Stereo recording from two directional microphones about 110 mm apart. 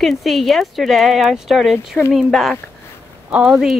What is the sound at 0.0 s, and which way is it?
Speech, centre (ahead or behind).